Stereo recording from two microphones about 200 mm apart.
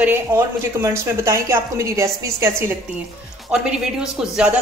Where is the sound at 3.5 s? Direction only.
5° right (ahead or behind).